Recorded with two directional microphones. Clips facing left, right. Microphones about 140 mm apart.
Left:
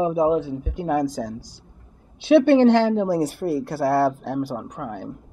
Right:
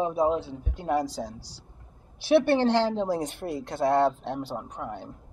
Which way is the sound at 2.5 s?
15° left (ahead or behind).